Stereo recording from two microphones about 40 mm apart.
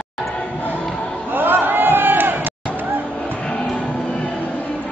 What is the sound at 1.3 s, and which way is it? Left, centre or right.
Crowd, right.